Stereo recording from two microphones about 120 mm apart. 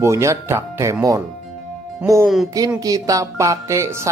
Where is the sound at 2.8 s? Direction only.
30° right (ahead or behind).